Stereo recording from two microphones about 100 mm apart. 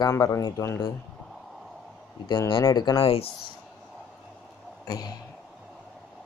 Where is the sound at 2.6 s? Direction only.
45° left (ahead or behind).